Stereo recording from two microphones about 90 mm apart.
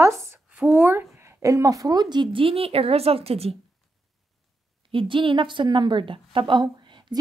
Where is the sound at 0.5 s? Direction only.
15° right (ahead or behind); by 3.6 s 90° right.